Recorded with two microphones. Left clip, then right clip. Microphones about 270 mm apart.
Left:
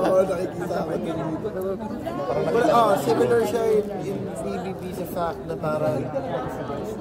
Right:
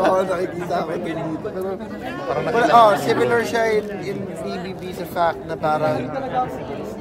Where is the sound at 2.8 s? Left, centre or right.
Right.